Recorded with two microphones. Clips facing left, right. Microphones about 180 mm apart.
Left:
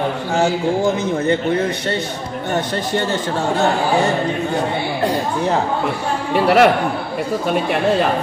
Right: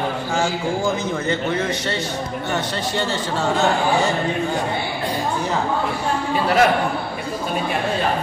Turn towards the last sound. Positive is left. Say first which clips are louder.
# left 4 dB
turn(degrees=75)  # may be behind; listen again after turning